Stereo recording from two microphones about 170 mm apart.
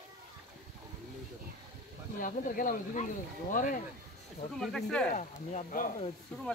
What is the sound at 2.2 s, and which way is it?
Speech, 50° left (ahead or behind).